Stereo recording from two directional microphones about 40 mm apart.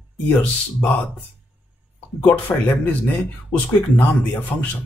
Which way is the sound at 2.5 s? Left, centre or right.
Left.